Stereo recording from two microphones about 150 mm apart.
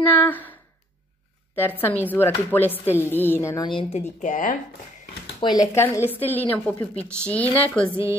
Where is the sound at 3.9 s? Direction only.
50° left (ahead or behind).